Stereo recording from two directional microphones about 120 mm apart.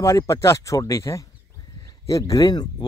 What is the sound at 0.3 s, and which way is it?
A man's voice, 25° left (ahead or behind).